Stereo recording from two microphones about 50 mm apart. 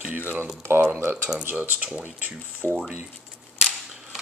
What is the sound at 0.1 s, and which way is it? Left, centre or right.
Speech, right.